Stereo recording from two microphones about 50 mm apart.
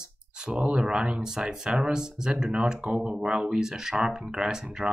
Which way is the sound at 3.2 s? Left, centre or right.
Centre.